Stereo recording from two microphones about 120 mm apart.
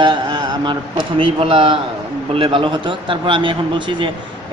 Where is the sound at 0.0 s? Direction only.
40° right (ahead or behind).